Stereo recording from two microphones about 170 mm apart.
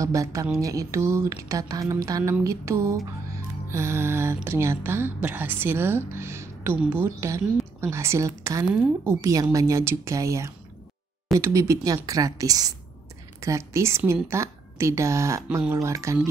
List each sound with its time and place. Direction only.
0.0 s a woman's voice: 20° right (ahead or behind)
8.6 s a woman's voice: 5° right (ahead or behind)
9.2 s a woman's voice: 20° right (ahead or behind)